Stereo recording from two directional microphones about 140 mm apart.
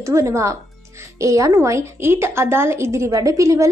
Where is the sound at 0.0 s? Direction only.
20° right (ahead or behind).